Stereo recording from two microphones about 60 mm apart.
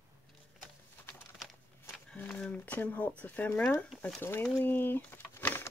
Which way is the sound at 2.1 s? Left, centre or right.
Left.